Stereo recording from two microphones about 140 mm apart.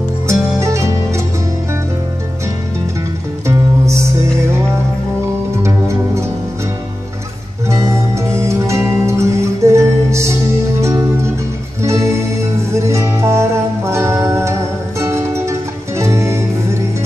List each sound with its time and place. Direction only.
0.3 s music: 20° right (ahead or behind)
3.4 s music: 20° right (ahead or behind)
5.6 s music: 20° right (ahead or behind)
7.7 s music: 20° right (ahead or behind)